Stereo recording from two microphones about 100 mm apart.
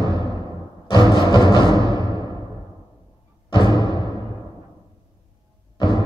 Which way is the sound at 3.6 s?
40° right (ahead or behind).